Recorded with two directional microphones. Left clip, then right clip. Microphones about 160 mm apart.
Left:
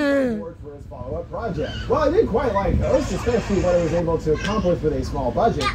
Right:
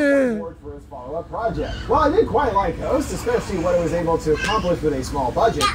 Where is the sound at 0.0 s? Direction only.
10° right (ahead or behind).